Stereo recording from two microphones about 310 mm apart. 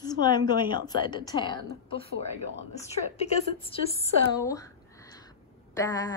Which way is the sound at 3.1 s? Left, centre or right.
Centre.